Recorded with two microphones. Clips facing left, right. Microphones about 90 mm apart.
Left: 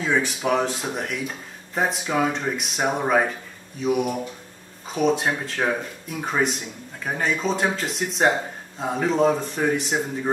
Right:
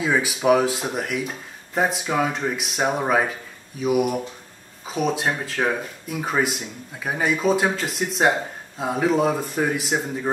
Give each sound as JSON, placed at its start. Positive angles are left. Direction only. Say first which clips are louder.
{"t": 0.0, "sound": "speech", "louder": "right 2 dB", "side_deg": -5}